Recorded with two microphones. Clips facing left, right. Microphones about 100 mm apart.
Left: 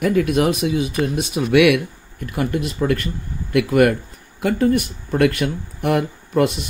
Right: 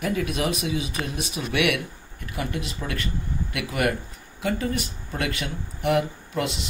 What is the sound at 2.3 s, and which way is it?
Speech, 50° left (ahead or behind).